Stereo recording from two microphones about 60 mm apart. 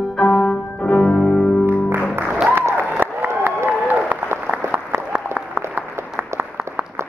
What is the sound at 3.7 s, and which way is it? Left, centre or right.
Applause, right.